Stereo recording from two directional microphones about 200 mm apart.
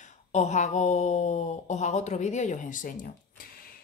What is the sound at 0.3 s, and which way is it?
A woman's voice, 35° left (ahead or behind).